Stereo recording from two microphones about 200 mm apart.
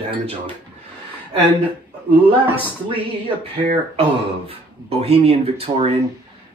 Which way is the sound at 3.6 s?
30° right (ahead or behind).